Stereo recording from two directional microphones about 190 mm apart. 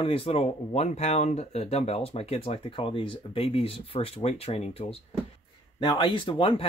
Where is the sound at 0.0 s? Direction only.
30° left (ahead or behind).